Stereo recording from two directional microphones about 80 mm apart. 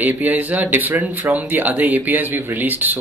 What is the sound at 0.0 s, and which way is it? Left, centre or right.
Speech, right.